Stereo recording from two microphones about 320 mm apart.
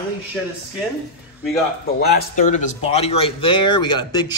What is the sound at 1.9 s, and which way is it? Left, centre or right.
Speech, left.